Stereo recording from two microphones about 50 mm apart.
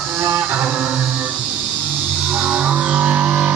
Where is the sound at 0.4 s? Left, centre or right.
Right.